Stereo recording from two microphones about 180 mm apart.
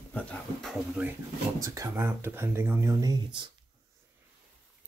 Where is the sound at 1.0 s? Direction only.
10° right (ahead or behind); by 3.4 s 25° right (ahead or behind).